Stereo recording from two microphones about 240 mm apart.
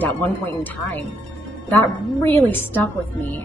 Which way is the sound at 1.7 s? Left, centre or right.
Centre.